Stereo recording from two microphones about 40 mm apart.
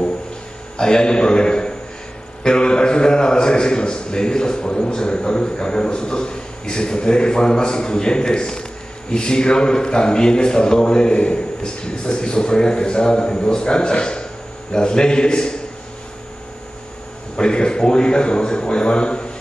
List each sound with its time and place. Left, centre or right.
0.7 s a man's voice: centre
2.4 s a sound: left
9.1 s a man's voice: centre
17.4 s a man's voice: left